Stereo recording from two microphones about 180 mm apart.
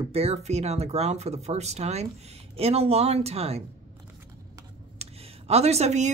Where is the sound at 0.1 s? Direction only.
35° right (ahead or behind).